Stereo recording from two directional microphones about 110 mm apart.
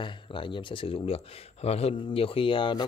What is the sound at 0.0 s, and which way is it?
Speech, 50° left (ahead or behind).